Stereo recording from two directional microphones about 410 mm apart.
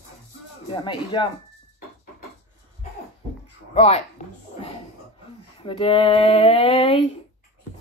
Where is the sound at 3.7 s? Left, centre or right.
Centre.